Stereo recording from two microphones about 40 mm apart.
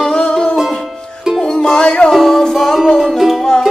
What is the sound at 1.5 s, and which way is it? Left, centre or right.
Music, left.